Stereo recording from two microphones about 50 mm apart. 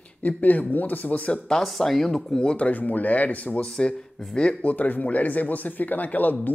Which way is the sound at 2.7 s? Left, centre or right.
Left.